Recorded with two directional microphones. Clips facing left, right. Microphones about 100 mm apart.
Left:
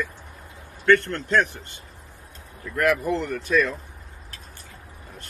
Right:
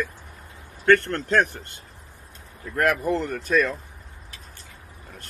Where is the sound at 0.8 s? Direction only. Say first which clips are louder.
Even; 45° right (ahead or behind).